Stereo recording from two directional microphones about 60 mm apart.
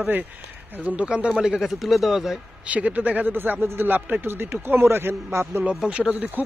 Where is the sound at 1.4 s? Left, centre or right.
Centre.